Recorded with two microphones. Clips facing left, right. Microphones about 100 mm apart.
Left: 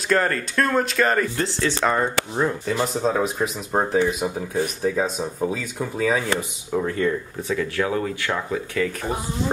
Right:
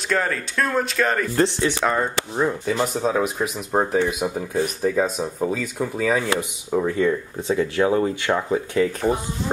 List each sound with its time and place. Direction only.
0.1 s speech: centre (ahead or behind)
1.4 s speech: 15° right (ahead or behind)
1.9 s speech: centre (ahead or behind)
6.7 s speech: 10° right (ahead or behind)
7.4 s speech: 25° right (ahead or behind)